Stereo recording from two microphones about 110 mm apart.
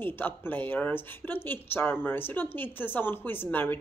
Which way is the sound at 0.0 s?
20° left (ahead or behind).